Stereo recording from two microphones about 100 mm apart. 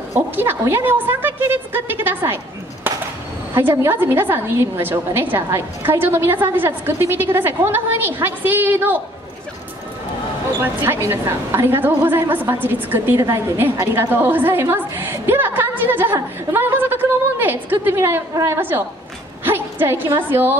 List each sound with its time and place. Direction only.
0.1 s a woman's voice: 25° right (ahead or behind)
10.6 s a woman's voice: 20° right (ahead or behind)
18.6 s a woman's voice: 20° right (ahead or behind)